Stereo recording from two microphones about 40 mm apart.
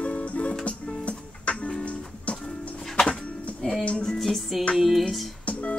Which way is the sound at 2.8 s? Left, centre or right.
Centre.